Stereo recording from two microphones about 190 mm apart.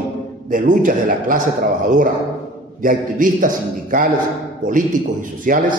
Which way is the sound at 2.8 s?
45° right (ahead or behind).